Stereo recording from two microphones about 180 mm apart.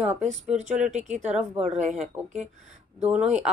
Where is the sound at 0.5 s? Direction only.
40° right (ahead or behind).